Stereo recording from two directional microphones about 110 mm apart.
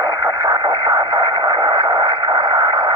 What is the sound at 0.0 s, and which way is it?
Radio, 30° right (ahead or behind).